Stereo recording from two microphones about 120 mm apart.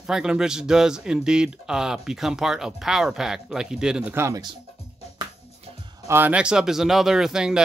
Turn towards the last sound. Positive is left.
turn(degrees=-5)  # may be behind; listen again after turning